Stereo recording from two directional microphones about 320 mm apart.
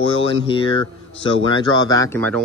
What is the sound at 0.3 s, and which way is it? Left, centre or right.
Speech, centre.